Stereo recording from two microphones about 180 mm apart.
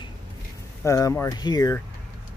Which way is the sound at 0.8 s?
15° left (ahead or behind).